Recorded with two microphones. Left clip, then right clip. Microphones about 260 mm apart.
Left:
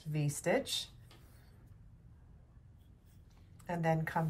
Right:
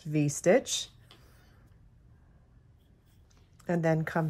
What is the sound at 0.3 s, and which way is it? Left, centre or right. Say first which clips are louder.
Speech: right 8 dB; right.